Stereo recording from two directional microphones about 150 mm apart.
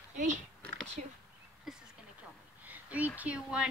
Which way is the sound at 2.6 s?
10° right (ahead or behind).